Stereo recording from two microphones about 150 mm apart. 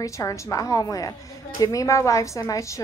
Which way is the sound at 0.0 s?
20° left (ahead or behind).